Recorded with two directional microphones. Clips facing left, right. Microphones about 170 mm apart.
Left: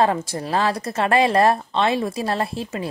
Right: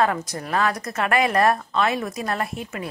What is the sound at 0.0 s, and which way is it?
Speech, 30° left (ahead or behind).